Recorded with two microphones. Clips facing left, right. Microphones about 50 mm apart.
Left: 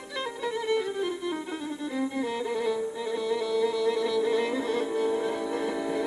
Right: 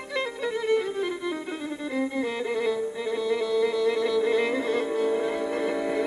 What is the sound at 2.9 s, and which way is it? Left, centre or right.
Music, right.